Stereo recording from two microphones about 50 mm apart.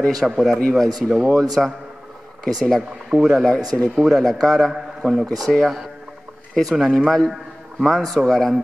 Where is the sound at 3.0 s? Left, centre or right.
Centre.